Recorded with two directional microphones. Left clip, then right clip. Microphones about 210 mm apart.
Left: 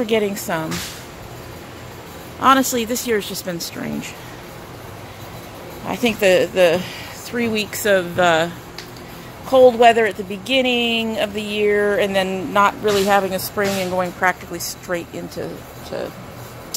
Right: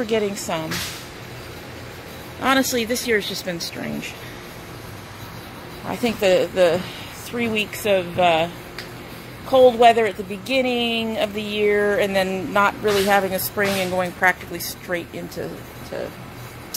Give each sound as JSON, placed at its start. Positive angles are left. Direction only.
{"t": 0.0, "sound": "speech", "side_deg": 25}
{"t": 2.4, "sound": "speech", "side_deg": 20}
{"t": 5.9, "sound": "speech", "side_deg": 20}
{"t": 9.5, "sound": "speech", "side_deg": 20}